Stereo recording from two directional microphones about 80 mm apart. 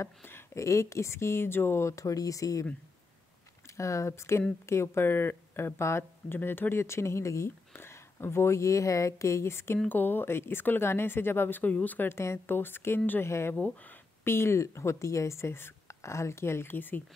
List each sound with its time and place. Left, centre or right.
0.0 s speech: left
3.7 s speech: left
13.6 s speech: centre
14.2 s speech: left